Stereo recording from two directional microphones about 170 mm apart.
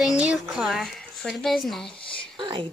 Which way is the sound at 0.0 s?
5° right (ahead or behind).